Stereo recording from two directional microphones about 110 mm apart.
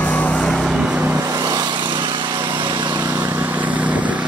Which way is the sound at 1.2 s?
35° right (ahead or behind).